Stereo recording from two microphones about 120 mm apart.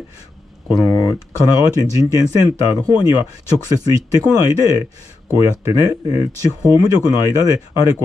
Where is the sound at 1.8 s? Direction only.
30° right (ahead or behind).